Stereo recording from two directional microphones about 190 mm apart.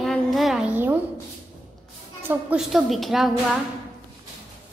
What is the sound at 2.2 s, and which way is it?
A woman's voice, 5° right (ahead or behind).